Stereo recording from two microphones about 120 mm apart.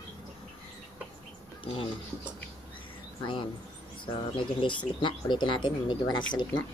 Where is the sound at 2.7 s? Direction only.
45° left (ahead or behind).